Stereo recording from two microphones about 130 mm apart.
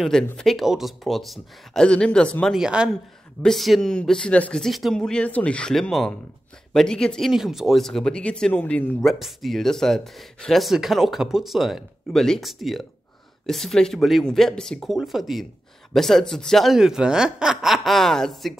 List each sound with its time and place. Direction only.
0.0 s speech: 5° left (ahead or behind)
2.5 s speech: 5° right (ahead or behind)